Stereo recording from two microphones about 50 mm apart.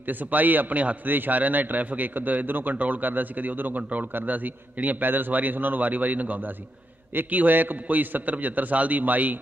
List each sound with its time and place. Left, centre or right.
0.0 s a man's voice: right